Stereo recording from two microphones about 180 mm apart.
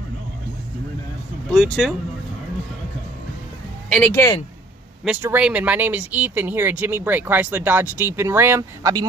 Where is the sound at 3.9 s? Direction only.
10° left (ahead or behind).